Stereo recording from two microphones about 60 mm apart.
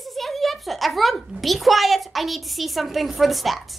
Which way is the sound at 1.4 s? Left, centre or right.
Centre.